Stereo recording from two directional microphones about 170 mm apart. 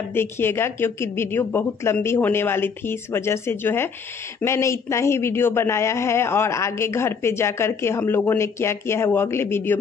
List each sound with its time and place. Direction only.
0.1 s speech: 15° left (ahead or behind)